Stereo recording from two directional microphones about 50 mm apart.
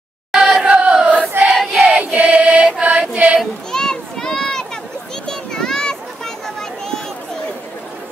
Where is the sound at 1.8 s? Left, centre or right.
Centre.